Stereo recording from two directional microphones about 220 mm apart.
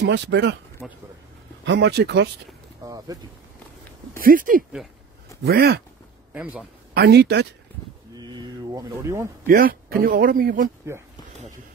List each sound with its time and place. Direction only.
0.0 s speech: 50° right (ahead or behind)
0.8 s speech: centre (ahead or behind)
1.6 s speech: 50° right (ahead or behind)
2.8 s speech: 15° right (ahead or behind)
4.2 s speech: 40° right (ahead or behind)
6.3 s a man's voice: 5° right (ahead or behind)
6.9 s speech: 50° right (ahead or behind)
8.2 s a sound: 20° right (ahead or behind)
9.5 s speech: 40° right (ahead or behind)
10.9 s a man's voice: 10° right (ahead or behind)